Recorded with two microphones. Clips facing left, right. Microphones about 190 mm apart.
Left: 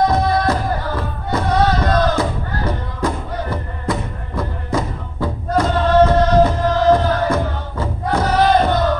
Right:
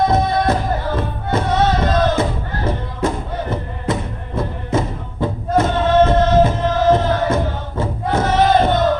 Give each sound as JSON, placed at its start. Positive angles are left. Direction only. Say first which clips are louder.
{"t": 0.1, "sound": "music", "louder": "right 1 dB", "side_deg": -25}